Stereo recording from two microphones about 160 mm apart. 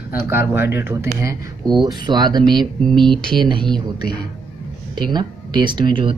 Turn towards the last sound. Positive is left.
turn(degrees=-30)  # may be behind; listen again after turning